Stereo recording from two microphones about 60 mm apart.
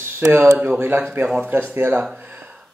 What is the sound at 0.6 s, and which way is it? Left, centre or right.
Speech, right.